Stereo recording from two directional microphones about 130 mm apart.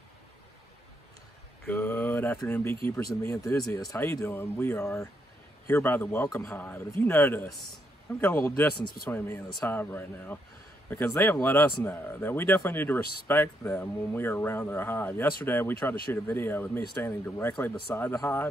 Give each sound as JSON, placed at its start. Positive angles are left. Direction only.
{"t": 1.7, "sound": "mantra", "side_deg": 15}
{"t": 2.4, "sound": "speech", "side_deg": 15}
{"t": 3.0, "sound": "speech", "side_deg": 25}